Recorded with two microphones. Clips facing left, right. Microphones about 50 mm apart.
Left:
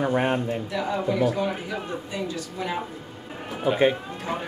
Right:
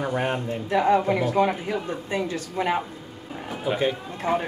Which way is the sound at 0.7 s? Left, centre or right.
Right.